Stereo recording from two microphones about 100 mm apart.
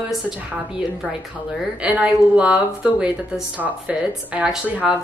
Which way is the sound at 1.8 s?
15° right (ahead or behind).